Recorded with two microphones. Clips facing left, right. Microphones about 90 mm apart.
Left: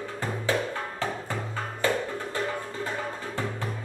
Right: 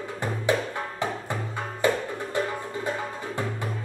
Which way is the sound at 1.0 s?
20° right (ahead or behind).